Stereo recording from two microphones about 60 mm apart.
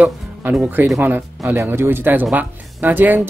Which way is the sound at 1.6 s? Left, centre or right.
Right.